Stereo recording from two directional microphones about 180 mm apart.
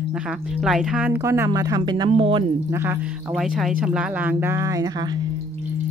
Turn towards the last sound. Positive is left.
turn(degrees=-20)  # may be behind; listen again after turning